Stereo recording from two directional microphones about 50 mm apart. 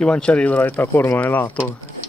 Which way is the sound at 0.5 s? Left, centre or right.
Left.